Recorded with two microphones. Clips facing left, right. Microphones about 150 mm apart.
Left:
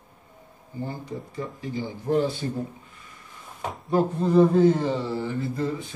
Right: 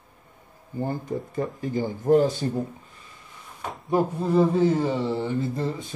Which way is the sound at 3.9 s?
5° right (ahead or behind).